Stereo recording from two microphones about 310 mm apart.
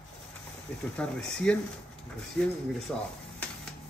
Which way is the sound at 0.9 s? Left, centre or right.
Centre.